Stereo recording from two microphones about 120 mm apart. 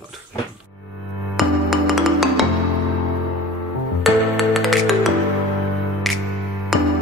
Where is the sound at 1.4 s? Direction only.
Centre (ahead or behind).